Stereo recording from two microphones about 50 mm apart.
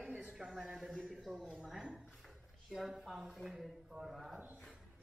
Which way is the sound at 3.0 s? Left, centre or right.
Centre.